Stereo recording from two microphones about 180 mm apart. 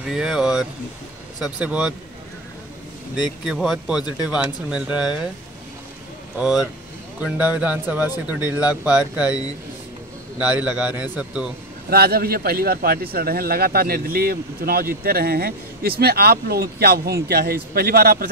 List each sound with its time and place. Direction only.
0.0 s speech: 5° right (ahead or behind)
3.2 s speech: centre (ahead or behind)
6.3 s speech: 5° right (ahead or behind)
10.4 s speech: 5° right (ahead or behind)
11.9 s a man's voice: 60° right (ahead or behind)